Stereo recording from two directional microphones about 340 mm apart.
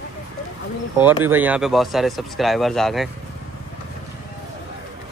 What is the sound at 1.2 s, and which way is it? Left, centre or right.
Speech, centre.